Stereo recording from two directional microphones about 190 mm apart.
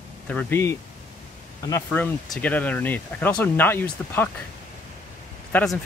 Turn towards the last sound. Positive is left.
turn(degrees=10)  # may be behind; listen again after turning